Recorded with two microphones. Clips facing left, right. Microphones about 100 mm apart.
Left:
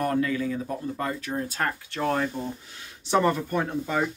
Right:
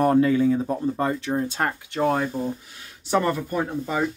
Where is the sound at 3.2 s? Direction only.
10° left (ahead or behind).